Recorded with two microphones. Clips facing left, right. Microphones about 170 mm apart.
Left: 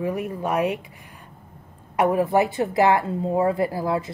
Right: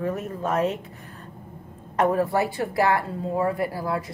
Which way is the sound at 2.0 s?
15° left (ahead or behind).